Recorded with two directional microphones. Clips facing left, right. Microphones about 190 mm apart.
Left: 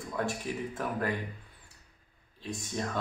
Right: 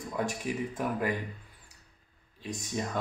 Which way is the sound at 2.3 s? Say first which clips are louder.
Right 1 dB; 15° right (ahead or behind).